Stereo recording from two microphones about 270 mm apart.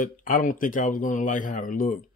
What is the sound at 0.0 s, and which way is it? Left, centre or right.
Speech, left.